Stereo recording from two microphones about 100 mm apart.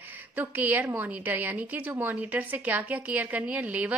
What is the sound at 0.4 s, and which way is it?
A woman's voice, 20° right (ahead or behind).